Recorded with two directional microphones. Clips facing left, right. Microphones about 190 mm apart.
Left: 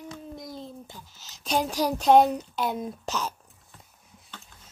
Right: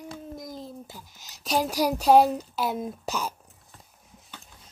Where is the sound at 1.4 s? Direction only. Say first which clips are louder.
Right 1 dB; 5° right (ahead or behind).